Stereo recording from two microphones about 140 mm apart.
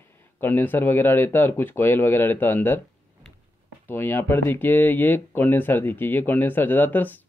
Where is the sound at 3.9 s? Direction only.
15° left (ahead or behind).